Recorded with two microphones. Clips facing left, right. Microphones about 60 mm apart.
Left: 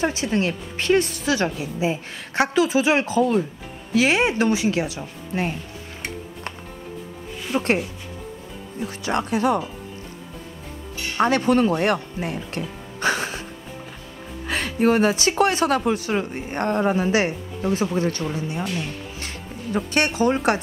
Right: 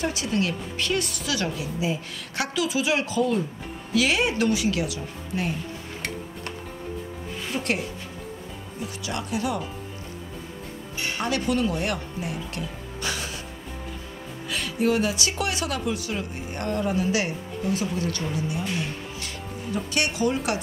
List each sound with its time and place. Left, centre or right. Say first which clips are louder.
0.0 s a woman's voice: left 4 dB; left
7.5 s speech: left 6 dB; left
9.0 s speech: left 7 dB; left
11.1 s speech: left 8 dB; left
14.5 s speech: left 4 dB; left